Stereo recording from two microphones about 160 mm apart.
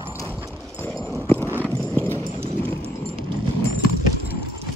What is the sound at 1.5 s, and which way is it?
Clip-clop, 10° left (ahead or behind).